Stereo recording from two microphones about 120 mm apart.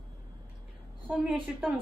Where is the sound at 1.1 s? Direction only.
10° right (ahead or behind).